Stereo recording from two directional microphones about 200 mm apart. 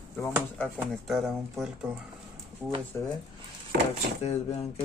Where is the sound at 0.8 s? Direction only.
Centre (ahead or behind).